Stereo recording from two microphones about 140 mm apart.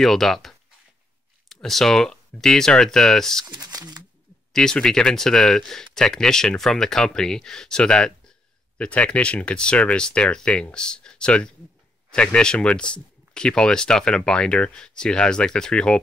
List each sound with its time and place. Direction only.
0.0 s speech: centre (ahead or behind)
3.5 s speech: 30° right (ahead or behind)
4.5 s speech: 5° left (ahead or behind)